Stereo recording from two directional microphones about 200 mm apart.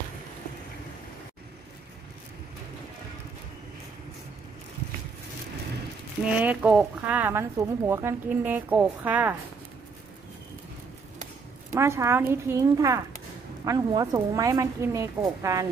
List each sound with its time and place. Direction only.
6.3 s speech: 10° right (ahead or behind)
11.7 s speech: 15° right (ahead or behind)